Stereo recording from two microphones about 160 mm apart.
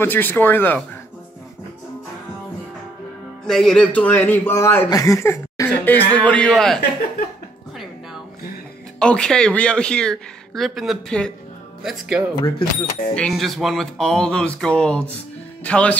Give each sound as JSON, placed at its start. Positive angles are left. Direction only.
{"t": 0.0, "sound": "speech", "side_deg": 15}
{"t": 3.4, "sound": "speech", "side_deg": 0}
{"t": 6.8, "sound": "speech", "side_deg": 70}
{"t": 9.0, "sound": "speech", "side_deg": 5}